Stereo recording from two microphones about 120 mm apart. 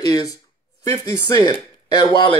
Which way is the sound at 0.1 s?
30° left (ahead or behind).